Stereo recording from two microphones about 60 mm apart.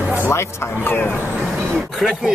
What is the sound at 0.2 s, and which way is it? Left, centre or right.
Speech, left.